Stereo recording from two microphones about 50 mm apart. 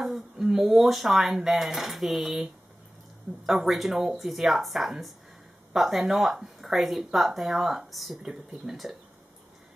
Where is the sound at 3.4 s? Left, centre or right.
Centre.